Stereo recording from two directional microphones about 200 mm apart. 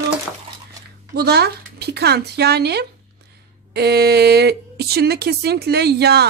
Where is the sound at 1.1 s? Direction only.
50° right (ahead or behind).